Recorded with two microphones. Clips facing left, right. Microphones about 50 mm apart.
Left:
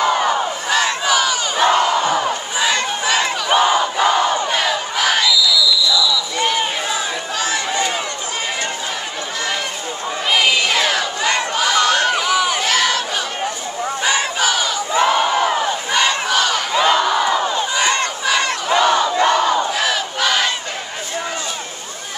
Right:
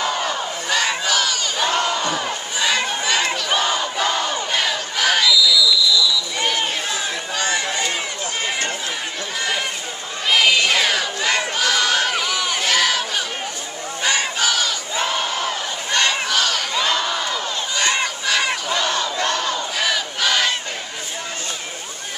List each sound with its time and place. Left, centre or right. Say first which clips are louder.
0.0 s crowd: left 6 dB; centre
0.7 s battle cry: left 2 dB; centre
1.8 s crowd: left 5 dB; centre
3.4 s battle cry: left 6 dB; centre
4.5 s crowd: left 3 dB; centre
10.3 s a sound: even; centre
14.0 s battle cry: left 2 dB; centre
15.0 s crowd: left 7 dB; centre
15.9 s battle cry: left 1 dB; centre
17.3 s crowd: left 7 dB; left
17.9 s crowd: left 3 dB; centre
18.7 s battle cry: left 7 dB; centre
19.8 s battle cry: left 2 dB; centre